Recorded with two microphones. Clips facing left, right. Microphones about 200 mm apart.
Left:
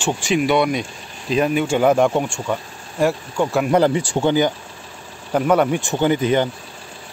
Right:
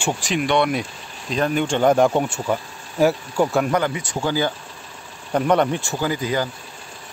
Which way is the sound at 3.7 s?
30° left (ahead or behind).